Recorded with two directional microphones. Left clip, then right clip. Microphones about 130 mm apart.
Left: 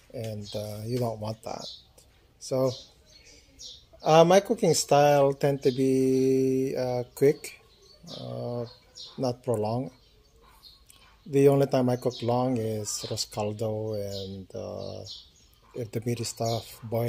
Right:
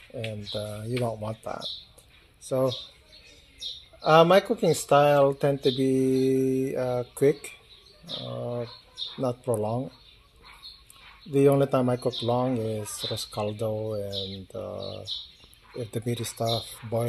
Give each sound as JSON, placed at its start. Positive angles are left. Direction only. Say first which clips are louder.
{"t": 0.1, "sound": "speech", "louder": "right 2 dB", "side_deg": 15}
{"t": 4.0, "sound": "speech", "louder": "right 1 dB", "side_deg": 30}
{"t": 11.2, "sound": "speech", "louder": "even", "side_deg": 20}
{"t": 15.8, "sound": "speech", "louder": "even", "side_deg": 20}